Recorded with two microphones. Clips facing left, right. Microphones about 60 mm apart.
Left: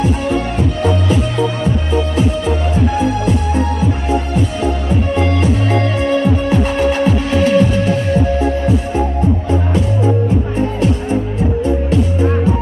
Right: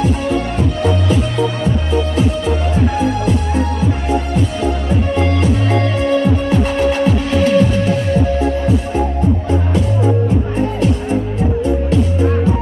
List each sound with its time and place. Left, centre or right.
5.1 s music: left